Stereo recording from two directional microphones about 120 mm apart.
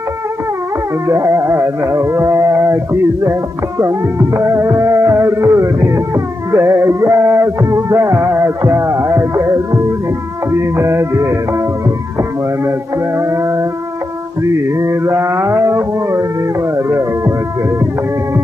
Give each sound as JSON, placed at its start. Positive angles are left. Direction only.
{"t": 1.0, "sound": "music", "side_deg": -25}
{"t": 13.2, "sound": "music", "side_deg": -25}
{"t": 14.8, "sound": "music", "side_deg": -25}